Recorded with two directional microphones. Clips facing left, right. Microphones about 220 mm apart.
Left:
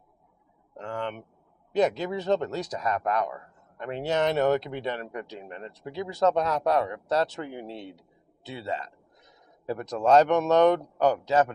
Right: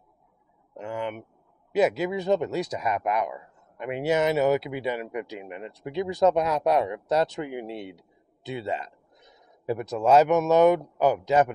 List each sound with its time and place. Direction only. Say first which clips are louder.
0.7 s speech: right 2 dB; 10° right (ahead or behind)